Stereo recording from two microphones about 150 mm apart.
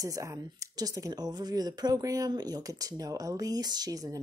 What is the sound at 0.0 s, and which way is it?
Speech, 20° right (ahead or behind).